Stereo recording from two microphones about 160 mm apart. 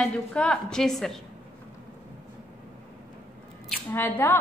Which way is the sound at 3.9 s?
10° left (ahead or behind).